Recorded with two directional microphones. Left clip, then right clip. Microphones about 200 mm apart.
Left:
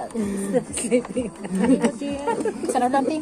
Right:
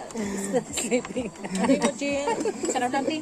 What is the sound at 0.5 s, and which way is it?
Speech, 10° right (ahead or behind).